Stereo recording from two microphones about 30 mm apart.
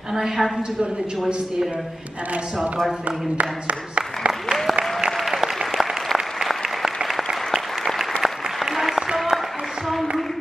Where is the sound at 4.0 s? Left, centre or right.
Right.